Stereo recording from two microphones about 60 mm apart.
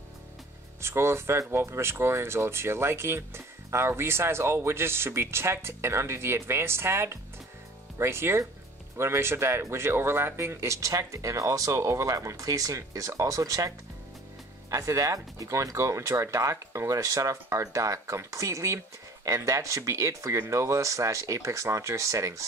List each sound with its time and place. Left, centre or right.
0.7 s speech: right